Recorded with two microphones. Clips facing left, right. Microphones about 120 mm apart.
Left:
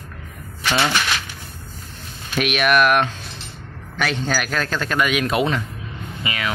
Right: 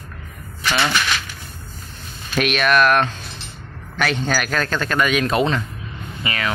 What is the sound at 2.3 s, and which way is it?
Speech, 10° left (ahead or behind).